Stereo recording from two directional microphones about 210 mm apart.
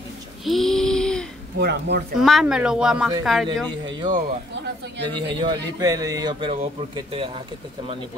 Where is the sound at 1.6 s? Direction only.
50° right (ahead or behind).